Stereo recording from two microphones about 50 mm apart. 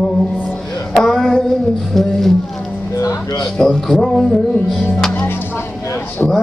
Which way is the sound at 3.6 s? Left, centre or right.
Centre.